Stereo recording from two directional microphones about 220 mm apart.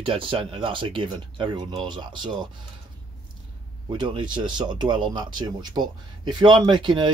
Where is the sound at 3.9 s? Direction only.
20° right (ahead or behind).